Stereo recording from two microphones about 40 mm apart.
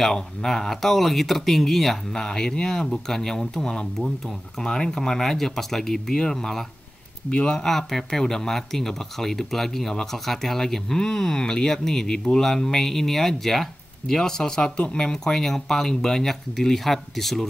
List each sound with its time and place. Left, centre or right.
0.0 s speech: centre
2.1 s speech: centre
7.2 s speech: left
7.6 s speech: centre